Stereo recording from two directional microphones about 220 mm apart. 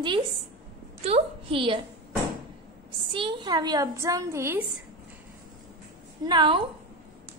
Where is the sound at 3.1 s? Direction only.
20° right (ahead or behind).